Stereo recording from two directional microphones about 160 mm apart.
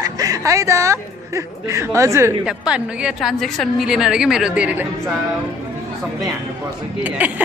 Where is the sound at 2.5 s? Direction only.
5° right (ahead or behind).